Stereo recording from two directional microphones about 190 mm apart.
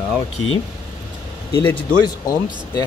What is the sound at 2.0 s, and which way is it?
Speech, 20° left (ahead or behind).